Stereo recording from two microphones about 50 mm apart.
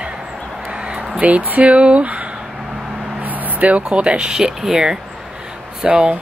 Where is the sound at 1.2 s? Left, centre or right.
Right.